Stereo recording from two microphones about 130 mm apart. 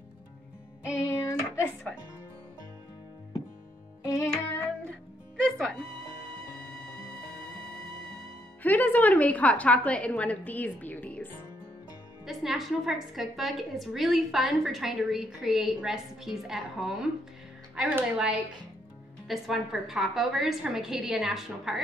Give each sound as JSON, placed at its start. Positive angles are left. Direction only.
{"t": 0.9, "sound": "music", "side_deg": 20}
{"t": 4.0, "sound": "music", "side_deg": 25}
{"t": 5.4, "sound": "music", "side_deg": 5}
{"t": 8.6, "sound": "a woman's voice", "side_deg": 15}
{"t": 12.3, "sound": "a woman's voice", "side_deg": -5}